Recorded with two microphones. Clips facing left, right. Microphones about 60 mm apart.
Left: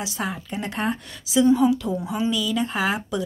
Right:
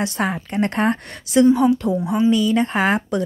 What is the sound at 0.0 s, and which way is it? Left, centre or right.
A woman's voice, right.